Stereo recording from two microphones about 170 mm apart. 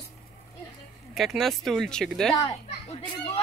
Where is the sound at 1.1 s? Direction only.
Centre (ahead or behind).